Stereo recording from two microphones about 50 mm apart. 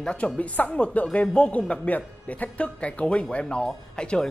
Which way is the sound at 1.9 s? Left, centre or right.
Left.